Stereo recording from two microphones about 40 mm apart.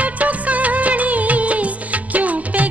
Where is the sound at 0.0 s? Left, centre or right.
Right.